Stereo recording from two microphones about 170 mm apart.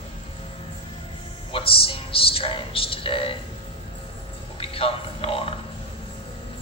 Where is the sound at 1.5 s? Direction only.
35° left (ahead or behind).